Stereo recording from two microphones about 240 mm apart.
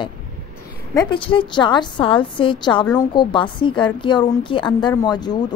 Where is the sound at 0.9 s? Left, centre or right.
Left.